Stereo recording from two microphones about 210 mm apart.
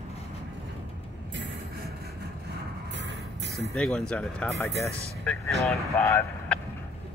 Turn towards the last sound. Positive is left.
turn(degrees=10)  # may be behind; listen again after turning